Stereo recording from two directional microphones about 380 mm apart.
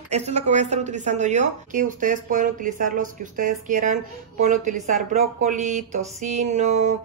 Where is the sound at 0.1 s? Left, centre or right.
Centre.